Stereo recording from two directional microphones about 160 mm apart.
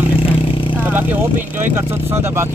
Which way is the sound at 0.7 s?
10° right (ahead or behind).